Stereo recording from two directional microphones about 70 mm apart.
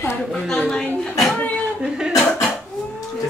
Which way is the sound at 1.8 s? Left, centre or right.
Centre.